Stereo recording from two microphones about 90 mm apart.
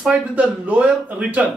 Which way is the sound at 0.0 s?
15° right (ahead or behind).